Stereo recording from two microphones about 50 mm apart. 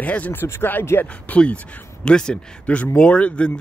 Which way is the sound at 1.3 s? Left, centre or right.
Left.